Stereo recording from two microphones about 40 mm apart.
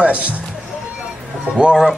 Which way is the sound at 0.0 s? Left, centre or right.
Right.